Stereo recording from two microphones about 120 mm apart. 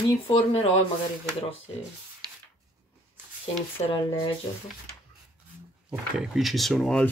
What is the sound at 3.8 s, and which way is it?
Speech, 55° left (ahead or behind).